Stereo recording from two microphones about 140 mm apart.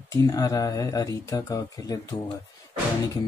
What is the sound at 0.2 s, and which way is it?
Speech, 25° left (ahead or behind).